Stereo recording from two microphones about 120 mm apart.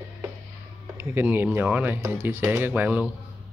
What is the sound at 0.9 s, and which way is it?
Speech, 20° right (ahead or behind).